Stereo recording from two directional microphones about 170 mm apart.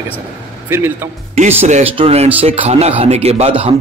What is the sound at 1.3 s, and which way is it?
A man's voice, 40° right (ahead or behind).